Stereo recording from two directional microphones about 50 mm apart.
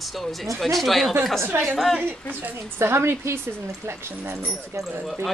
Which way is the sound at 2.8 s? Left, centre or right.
Right.